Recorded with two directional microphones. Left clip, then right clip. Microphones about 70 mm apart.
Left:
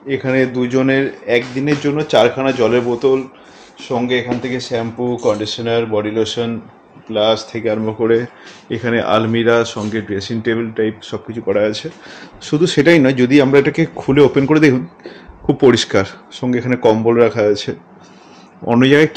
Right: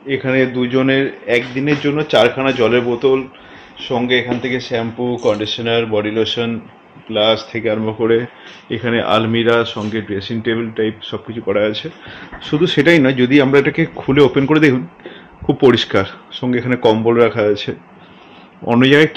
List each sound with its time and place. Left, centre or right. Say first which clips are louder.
0.1 s speech: even; centre
11.1 s speech: left 1 dB; centre
18.8 s speech: even; centre